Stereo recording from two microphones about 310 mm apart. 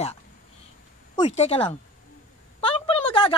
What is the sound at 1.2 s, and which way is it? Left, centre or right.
A woman's voice, centre.